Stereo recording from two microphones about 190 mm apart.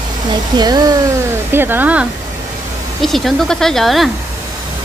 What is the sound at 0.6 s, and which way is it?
Speech, 20° right (ahead or behind).